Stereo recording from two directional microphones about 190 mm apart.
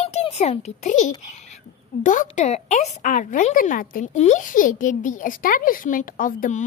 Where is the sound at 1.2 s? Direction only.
35° left (ahead or behind).